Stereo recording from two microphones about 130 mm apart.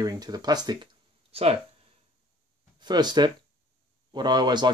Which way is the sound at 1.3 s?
50° right (ahead or behind).